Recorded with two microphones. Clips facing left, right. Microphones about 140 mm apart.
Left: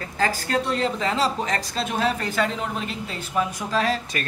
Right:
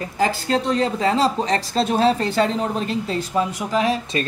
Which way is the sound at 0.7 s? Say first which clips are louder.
Right 4 dB; 35° right (ahead or behind).